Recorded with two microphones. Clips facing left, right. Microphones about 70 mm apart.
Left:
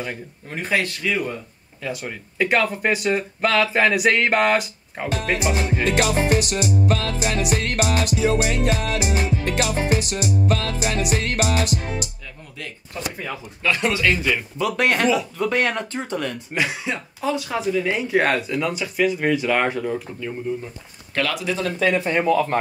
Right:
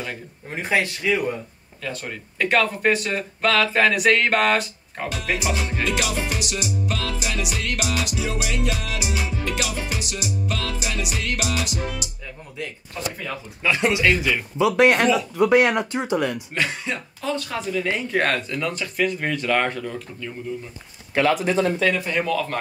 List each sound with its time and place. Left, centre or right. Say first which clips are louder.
0.5 s speech: even; centre
1.8 s speech: left 2 dB; centre
5.1 s speech: left 3 dB; left
5.9 s music: left 7 dB; left
13.6 s speech: right 1 dB; centre
14.1 s a man's voice: even; centre
14.8 s speech: right 2 dB; centre
16.5 s speech: left 1 dB; centre
21.1 s speech: right 5 dB; right
21.4 s speech: right 4 dB; right
21.9 s speech: left 4 dB; left